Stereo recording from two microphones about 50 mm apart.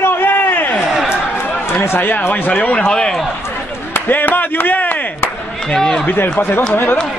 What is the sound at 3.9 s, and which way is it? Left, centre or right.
Chop, left.